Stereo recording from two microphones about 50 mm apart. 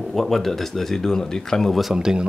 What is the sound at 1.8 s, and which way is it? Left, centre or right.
Speech, centre.